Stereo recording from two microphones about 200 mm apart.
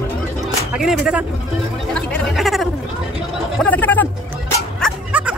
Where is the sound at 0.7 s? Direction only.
5° right (ahead or behind).